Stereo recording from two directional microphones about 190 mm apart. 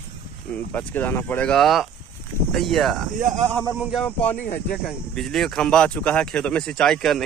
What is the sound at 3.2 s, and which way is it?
Speech, 40° right (ahead or behind).